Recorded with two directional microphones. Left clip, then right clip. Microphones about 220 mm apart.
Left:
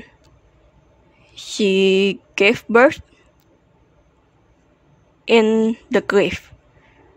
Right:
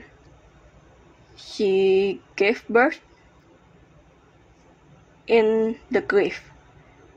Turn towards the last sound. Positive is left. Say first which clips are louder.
# left 4 dB
turn(degrees=50)  # may be behind; listen again after turning